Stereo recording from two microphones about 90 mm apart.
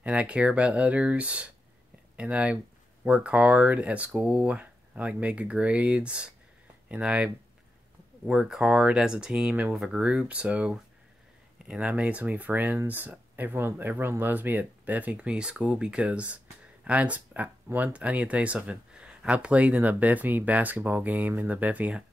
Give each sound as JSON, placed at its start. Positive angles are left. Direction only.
{"t": 0.0, "sound": "speech", "side_deg": -15}